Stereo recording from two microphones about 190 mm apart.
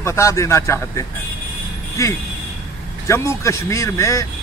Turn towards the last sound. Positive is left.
turn(degrees=15)  # may be behind; listen again after turning